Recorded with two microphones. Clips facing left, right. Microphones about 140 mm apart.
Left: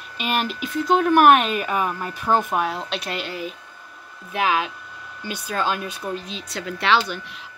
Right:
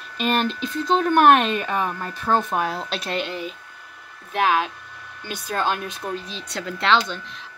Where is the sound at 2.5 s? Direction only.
Centre (ahead or behind).